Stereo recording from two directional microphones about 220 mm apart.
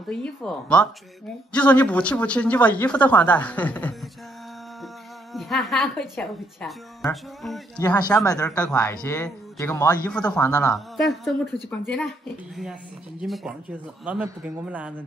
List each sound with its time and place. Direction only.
0.1 s speech: 5° left (ahead or behind)
5.3 s speech: centre (ahead or behind)
7.7 s speech: 15° left (ahead or behind)
10.5 s speech: 15° left (ahead or behind)
11.0 s speech: centre (ahead or behind)
13.2 s speech: centre (ahead or behind)